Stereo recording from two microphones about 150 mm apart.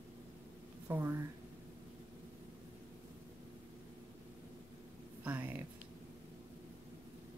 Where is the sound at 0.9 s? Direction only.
15° right (ahead or behind).